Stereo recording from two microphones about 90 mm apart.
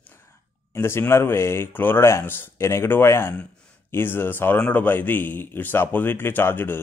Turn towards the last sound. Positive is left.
turn(degrees=25)  # may be behind; listen again after turning